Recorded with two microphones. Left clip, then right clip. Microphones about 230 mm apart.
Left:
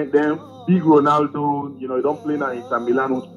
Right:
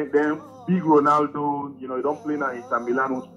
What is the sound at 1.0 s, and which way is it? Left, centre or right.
Speech, left.